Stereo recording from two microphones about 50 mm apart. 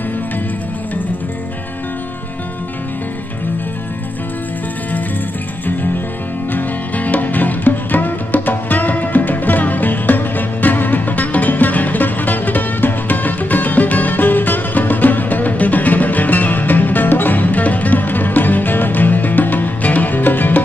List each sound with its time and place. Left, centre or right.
6.5 s music: left